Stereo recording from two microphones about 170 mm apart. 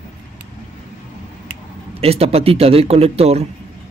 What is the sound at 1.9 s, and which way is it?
Speech, 35° right (ahead or behind).